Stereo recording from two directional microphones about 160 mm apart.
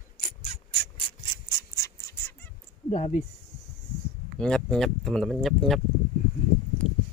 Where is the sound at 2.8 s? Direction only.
45° left (ahead or behind).